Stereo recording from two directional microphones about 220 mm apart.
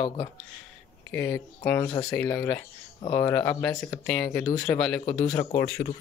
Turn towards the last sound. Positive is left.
turn(degrees=5)  # may be behind; listen again after turning